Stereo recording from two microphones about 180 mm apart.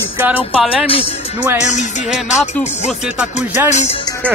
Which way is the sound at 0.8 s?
30° left (ahead or behind).